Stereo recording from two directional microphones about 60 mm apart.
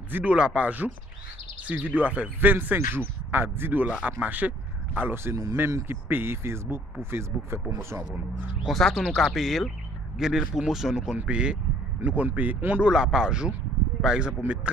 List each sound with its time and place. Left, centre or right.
0.1 s speech: right
5.1 s speech: right
8.6 s speech: centre; by 12.8 s right
12.8 s speech: centre